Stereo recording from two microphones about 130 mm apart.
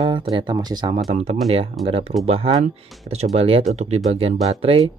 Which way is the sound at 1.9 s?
50° right (ahead or behind).